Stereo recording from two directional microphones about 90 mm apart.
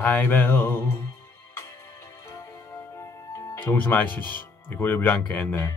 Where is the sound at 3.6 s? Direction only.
20° left (ahead or behind).